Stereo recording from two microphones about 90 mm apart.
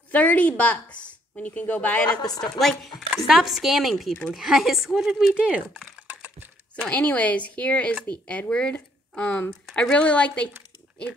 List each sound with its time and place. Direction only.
0.1 s speech: 15° left (ahead or behind)
2.0 s speech: 45° left (ahead or behind)
2.4 s speech: 5° left (ahead or behind); by 5.8 s 15° right (ahead or behind)
5.9 s typing: 20° right (ahead or behind)
6.8 s speech: 15° left (ahead or behind)